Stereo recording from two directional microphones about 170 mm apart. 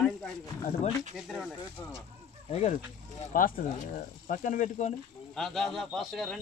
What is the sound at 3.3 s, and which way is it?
Speech, 55° left (ahead or behind).